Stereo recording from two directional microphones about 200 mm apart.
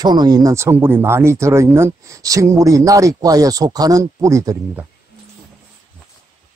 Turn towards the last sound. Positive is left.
turn(degrees=-15)  # may be behind; listen again after turning